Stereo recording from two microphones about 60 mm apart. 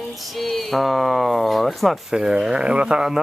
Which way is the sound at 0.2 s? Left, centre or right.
Centre.